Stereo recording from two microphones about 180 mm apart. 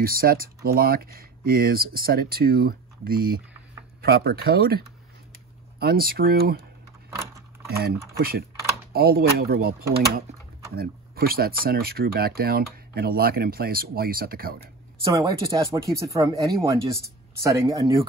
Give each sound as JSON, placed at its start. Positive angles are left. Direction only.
{"t": 0.0, "sound": "speech", "side_deg": -55}
{"t": 7.8, "sound": "speech", "side_deg": -60}
{"t": 15.1, "sound": "speech", "side_deg": -20}